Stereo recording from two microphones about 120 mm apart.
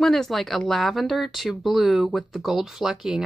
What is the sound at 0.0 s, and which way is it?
Speech, centre (ahead or behind).